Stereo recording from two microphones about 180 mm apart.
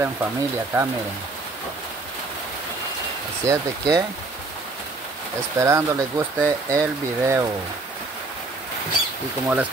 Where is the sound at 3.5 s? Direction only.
15° right (ahead or behind).